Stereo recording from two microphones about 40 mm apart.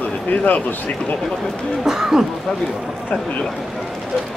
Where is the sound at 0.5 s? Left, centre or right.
Left.